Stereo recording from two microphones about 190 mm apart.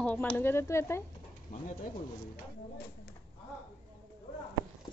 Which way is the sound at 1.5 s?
45° left (ahead or behind).